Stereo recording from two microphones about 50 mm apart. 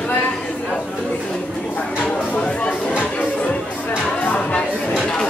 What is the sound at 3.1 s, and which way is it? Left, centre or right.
Music, left.